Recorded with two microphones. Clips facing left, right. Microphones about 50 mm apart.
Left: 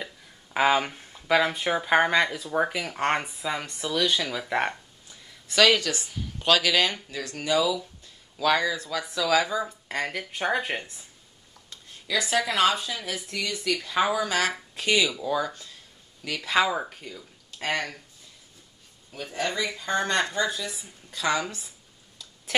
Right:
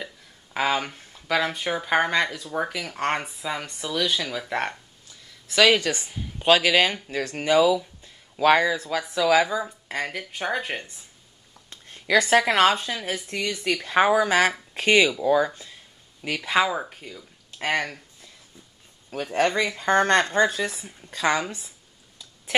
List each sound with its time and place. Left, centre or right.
0.0 s speech: centre
5.7 s a woman's voice: right
7.1 s a woman's voice: right
9.8 s speech: centre
12.1 s a woman's voice: right
16.5 s speech: centre
17.6 s a woman's voice: centre
19.3 s speech: right